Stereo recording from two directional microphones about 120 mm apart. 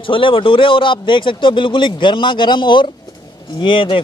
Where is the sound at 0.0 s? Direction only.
45° left (ahead or behind).